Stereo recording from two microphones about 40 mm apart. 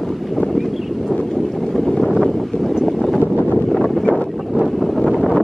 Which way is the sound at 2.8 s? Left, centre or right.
Centre.